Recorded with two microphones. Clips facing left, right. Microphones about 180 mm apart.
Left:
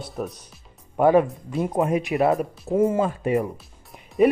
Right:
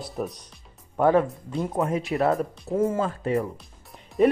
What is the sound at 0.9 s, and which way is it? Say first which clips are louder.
Speech: left 3 dB; 15° left (ahead or behind).